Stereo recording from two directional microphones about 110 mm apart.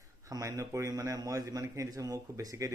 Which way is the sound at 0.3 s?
30° right (ahead or behind).